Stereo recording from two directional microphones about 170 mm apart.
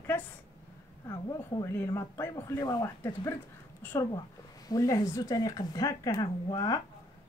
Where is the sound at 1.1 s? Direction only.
20° left (ahead or behind).